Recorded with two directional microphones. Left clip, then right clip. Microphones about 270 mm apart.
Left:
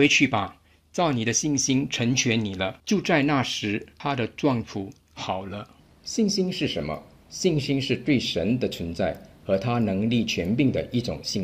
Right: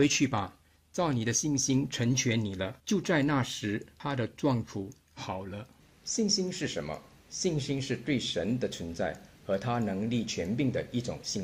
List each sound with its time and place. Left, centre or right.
0.2 s speech: centre
6.1 s speech: left